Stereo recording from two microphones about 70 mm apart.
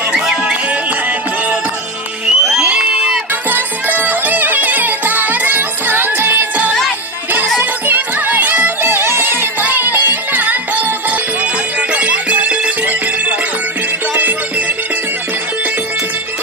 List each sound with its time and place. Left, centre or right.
2.2 s music: centre
2.6 s crowd: centre
3.4 s music: right
11.9 s music: centre